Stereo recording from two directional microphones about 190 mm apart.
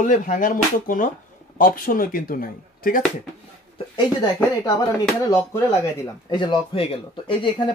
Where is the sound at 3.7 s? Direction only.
25° left (ahead or behind).